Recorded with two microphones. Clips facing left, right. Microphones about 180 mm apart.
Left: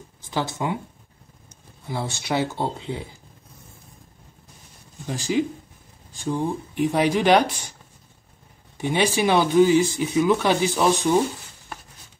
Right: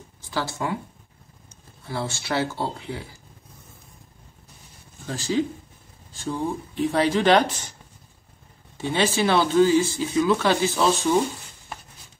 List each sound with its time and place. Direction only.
0.2 s speech: 20° left (ahead or behind)
1.9 s speech: 20° left (ahead or behind)
5.0 s speech: 15° left (ahead or behind)
8.7 s speech: 15° left (ahead or behind)